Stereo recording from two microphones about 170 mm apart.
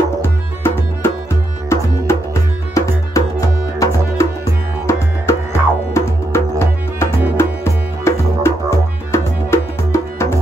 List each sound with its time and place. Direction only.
0.2 s music: 15° left (ahead or behind)